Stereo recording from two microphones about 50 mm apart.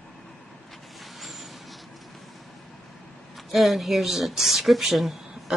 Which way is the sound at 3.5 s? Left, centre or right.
Centre.